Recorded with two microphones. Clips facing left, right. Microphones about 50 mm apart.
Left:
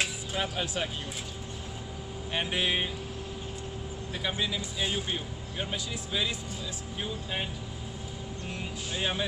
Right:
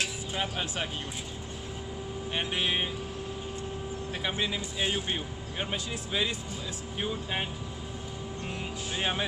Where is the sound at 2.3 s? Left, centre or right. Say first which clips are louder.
Left 1 dB; centre.